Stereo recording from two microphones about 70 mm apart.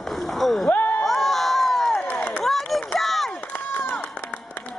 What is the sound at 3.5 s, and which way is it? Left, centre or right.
Run, left.